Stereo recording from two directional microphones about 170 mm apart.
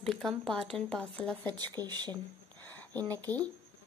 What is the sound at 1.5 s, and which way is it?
Speech, 25° right (ahead or behind).